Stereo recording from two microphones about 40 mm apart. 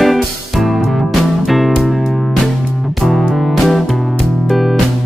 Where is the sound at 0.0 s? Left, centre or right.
Centre.